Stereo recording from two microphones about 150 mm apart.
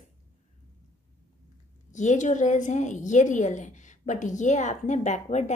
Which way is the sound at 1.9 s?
55° left (ahead or behind).